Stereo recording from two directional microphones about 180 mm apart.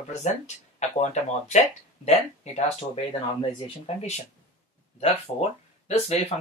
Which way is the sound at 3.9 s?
35° left (ahead or behind).